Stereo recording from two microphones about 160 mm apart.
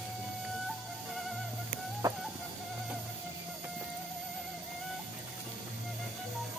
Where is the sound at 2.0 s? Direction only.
25° right (ahead or behind).